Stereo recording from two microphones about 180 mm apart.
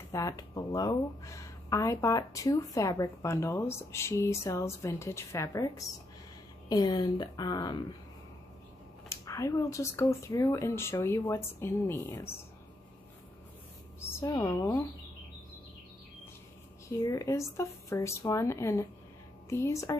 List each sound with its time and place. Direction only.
0.1 s speech: 20° left (ahead or behind)
9.1 s speech: 15° left (ahead or behind)
14.2 s speech: 15° left (ahead or behind)
17.0 s speech: 20° left (ahead or behind)